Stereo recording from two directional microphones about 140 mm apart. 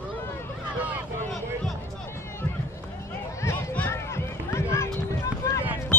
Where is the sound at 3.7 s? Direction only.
15° left (ahead or behind).